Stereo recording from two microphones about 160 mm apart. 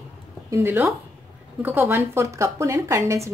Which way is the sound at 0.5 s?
15° right (ahead or behind).